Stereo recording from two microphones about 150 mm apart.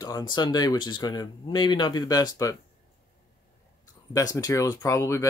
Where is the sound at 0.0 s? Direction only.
25° left (ahead or behind).